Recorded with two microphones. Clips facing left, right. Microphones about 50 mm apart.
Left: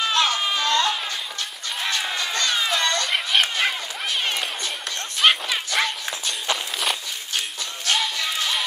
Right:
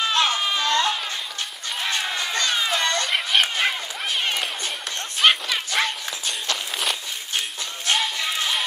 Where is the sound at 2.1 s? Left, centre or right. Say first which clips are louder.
Even; centre.